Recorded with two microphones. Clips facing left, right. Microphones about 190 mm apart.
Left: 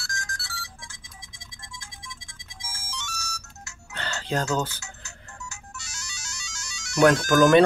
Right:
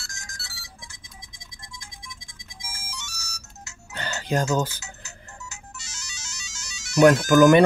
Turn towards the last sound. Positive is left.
turn(degrees=-15)  # may be behind; listen again after turning